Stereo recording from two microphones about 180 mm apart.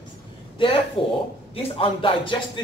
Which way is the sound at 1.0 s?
30° left (ahead or behind).